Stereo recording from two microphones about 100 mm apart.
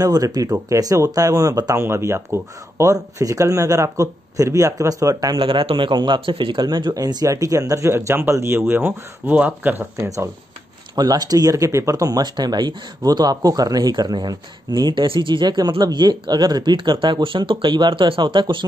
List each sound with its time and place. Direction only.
0.0 s speech: 40° right (ahead or behind)
5.4 s speech: 65° right (ahead or behind); by 10.0 s 20° right (ahead or behind)
10.0 s speech: 35° right (ahead or behind); by 18.7 s 50° right (ahead or behind)